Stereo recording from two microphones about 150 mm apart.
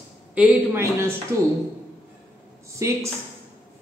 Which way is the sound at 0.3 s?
15° right (ahead or behind).